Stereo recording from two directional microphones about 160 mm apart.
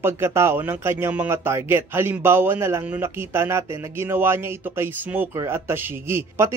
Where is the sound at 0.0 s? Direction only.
15° right (ahead or behind).